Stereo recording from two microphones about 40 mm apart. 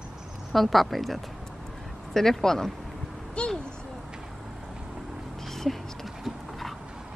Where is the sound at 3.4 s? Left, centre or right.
Left.